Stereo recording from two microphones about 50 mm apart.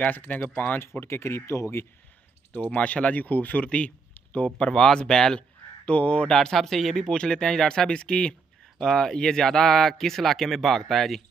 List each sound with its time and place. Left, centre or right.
0.0 s a man's voice: left
1.0 s speech: left
2.5 s a man's voice: left
4.6 s speech: centre
5.9 s speech: left
6.3 s speech: centre